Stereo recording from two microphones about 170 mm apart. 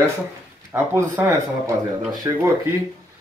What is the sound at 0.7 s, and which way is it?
Speech, 15° right (ahead or behind).